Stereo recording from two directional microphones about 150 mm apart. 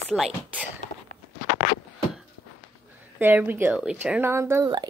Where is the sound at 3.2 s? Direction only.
10° right (ahead or behind).